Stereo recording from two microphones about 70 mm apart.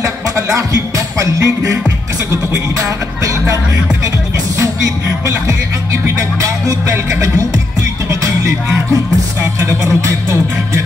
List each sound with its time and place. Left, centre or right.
0.6 s music: right
6.0 s music: right